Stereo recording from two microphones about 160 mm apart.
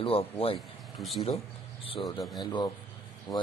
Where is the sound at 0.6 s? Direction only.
Centre (ahead or behind).